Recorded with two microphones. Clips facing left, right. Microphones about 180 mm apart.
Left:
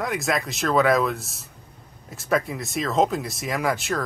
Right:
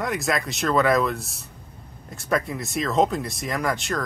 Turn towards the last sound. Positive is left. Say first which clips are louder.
# left 1 dB
turn(degrees=5)  # may be behind; listen again after turning